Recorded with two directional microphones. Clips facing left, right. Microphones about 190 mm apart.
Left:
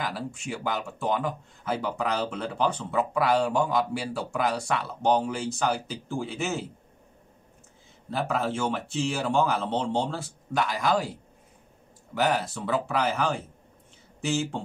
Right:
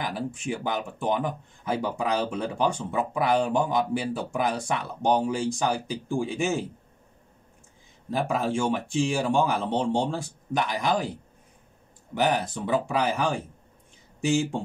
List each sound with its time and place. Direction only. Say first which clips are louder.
0.0 s speech: right 2 dB; 20° right (ahead or behind)
8.1 s speech: right 2 dB; 15° right (ahead or behind)
12.1 s speech: right 1 dB; 20° right (ahead or behind)